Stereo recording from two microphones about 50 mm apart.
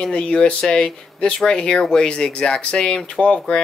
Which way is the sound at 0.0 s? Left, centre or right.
Centre.